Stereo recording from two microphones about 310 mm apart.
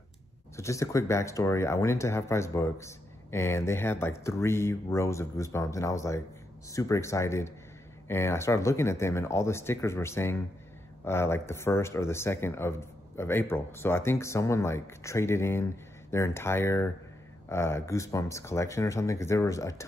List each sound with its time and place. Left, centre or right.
0.6 s speech: centre